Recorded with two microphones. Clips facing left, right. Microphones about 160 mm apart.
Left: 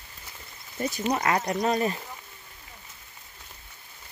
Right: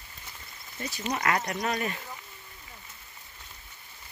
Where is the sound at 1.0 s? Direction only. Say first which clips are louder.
Left 3 dB; 30° left (ahead or behind).